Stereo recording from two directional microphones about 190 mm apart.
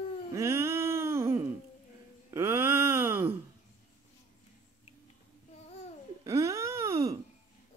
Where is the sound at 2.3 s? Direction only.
10° right (ahead or behind).